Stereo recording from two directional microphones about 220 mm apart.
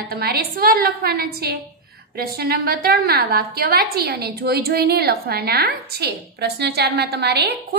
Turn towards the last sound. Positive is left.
turn(degrees=-45)  # may be behind; listen again after turning